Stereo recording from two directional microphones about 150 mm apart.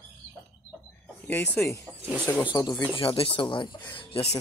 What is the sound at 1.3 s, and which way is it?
Speech, 10° left (ahead or behind).